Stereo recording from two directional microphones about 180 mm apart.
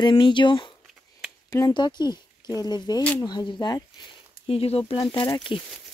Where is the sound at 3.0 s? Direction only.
5° left (ahead or behind).